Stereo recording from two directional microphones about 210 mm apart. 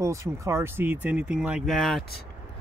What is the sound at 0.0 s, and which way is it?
Speech, 15° right (ahead or behind).